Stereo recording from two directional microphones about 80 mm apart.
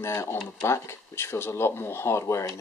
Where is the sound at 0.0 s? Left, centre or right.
Left.